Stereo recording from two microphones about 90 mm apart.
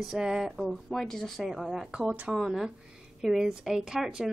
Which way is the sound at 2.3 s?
5° right (ahead or behind).